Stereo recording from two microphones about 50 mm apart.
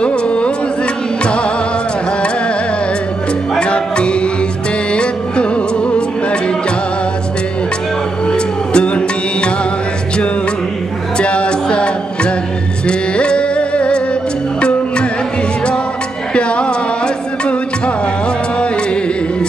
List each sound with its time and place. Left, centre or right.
0.0 s music: left
3.5 s music: centre
8.3 s music: left
11.1 s music: left
16.3 s music: left